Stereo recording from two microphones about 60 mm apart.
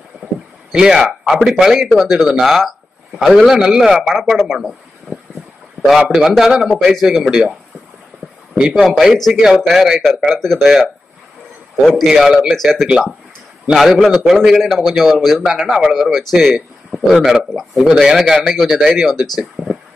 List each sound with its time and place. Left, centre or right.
0.7 s a man's voice: centre
5.1 s boat: centre
5.9 s a man's voice: centre
8.5 s a man's voice: centre
8.8 s a man's voice: centre
12.0 s a man's voice: centre
12.5 s a man's voice: centre
12.8 s a man's voice: centre